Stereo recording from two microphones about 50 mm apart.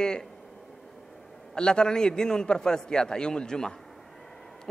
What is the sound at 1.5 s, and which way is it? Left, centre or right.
A man's voice, centre.